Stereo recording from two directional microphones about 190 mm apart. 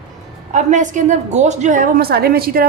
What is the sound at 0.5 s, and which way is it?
A woman's voice, 40° right (ahead or behind).